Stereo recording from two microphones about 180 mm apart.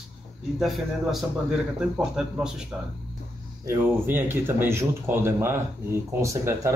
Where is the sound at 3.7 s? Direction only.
10° right (ahead or behind).